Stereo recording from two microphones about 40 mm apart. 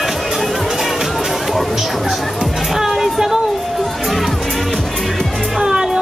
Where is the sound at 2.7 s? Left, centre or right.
Centre.